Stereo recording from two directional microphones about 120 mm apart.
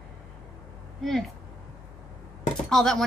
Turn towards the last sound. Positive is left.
turn(degrees=5)  # may be behind; listen again after turning